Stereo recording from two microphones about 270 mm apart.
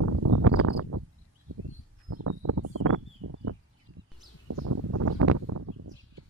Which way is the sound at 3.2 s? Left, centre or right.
Right.